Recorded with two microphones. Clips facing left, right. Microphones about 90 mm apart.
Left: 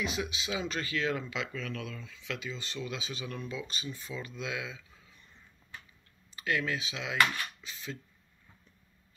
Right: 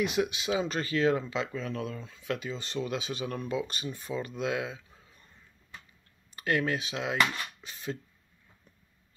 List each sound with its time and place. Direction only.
0.0 s speech: 55° right (ahead or behind)
6.3 s speech: 45° right (ahead or behind)